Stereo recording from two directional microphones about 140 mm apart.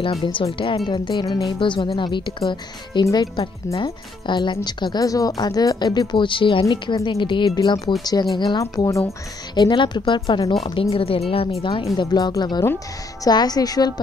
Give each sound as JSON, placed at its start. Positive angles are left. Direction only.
{"t": 0.0, "sound": "speech", "side_deg": 40}
{"t": 12.0, "sound": "speech", "side_deg": 30}